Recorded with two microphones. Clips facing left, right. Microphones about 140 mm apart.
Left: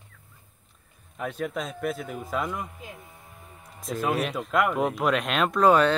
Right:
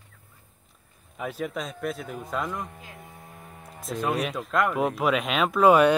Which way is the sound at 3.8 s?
Centre (ahead or behind).